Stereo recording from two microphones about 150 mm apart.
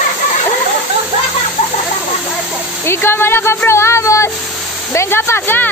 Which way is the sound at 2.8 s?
15° left (ahead or behind).